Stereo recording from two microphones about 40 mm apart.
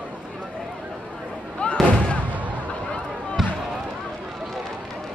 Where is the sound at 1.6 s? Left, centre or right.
Left.